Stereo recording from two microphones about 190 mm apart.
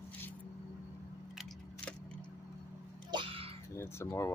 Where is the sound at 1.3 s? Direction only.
Centre (ahead or behind).